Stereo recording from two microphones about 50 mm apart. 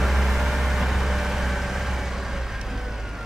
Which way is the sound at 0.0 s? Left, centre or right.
Centre.